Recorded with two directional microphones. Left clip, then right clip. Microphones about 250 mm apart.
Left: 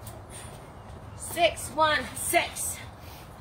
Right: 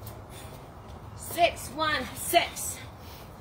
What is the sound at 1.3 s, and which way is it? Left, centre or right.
Speech, centre.